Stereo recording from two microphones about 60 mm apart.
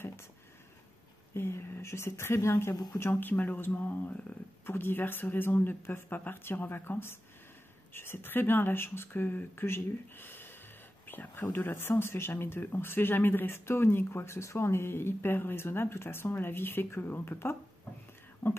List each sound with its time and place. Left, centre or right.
0.0 s a sound: left
1.3 s a woman's voice: left
3.0 s speech: left